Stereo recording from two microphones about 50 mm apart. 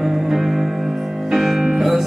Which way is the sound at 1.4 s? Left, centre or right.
Centre.